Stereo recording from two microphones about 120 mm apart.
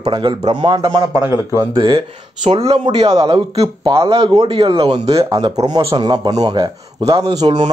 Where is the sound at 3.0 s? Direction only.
35° right (ahead or behind).